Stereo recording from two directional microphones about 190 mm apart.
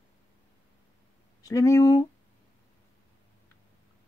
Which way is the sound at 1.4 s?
20° left (ahead or behind).